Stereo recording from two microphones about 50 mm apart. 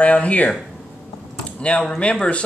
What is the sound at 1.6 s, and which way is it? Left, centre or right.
Speech, left.